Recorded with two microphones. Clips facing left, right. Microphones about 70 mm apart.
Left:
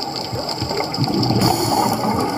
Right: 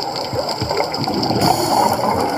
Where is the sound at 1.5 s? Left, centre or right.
Right.